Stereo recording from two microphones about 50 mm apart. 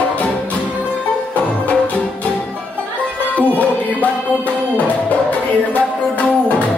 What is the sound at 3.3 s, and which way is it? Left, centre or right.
Music, left.